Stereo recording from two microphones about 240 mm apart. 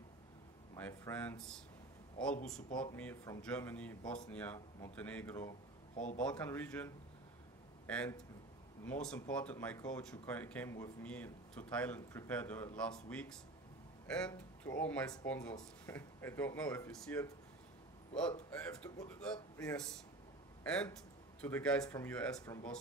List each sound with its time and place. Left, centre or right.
0.7 s speech: centre
5.9 s speech: left
6.2 s speech: centre
18.5 s speech: centre